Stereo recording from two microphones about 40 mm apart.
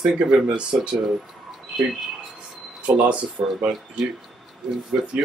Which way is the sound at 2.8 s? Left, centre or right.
Right.